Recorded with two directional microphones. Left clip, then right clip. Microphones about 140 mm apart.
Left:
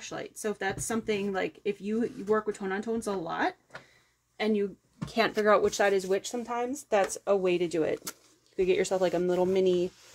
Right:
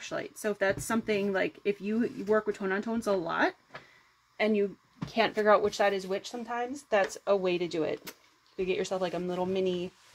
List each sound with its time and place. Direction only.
0.0 s speech: 55° right (ahead or behind)
4.4 s speech: 35° right (ahead or behind)
5.0 s speech: centre (ahead or behind)
5.4 s speech: 30° left (ahead or behind)
7.0 s speech: 20° left (ahead or behind)
8.5 s speech: 45° left (ahead or behind)